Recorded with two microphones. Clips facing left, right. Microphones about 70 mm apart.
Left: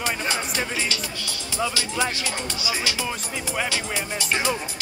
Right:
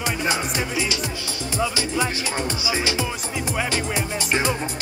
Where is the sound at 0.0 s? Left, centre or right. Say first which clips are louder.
Right 2 dB; centre.